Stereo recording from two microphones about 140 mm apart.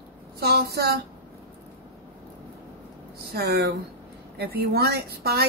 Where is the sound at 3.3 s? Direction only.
90° right.